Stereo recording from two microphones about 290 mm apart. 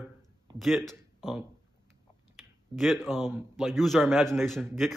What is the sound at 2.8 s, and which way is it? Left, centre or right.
A man's voice, centre.